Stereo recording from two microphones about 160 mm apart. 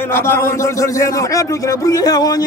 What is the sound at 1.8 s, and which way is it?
Speech, 25° left (ahead or behind).